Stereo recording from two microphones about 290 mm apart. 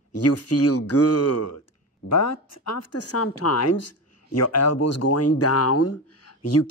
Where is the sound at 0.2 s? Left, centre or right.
Left.